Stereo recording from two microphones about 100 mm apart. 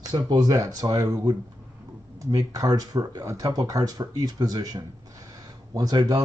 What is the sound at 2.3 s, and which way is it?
Speech, 35° right (ahead or behind).